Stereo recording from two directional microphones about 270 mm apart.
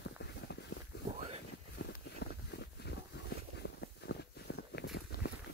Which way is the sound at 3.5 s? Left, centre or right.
Left.